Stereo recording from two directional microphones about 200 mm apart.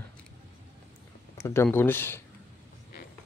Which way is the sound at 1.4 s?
10° left (ahead or behind).